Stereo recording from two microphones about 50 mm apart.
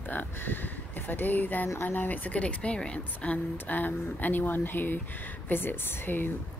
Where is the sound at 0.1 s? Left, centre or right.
Left.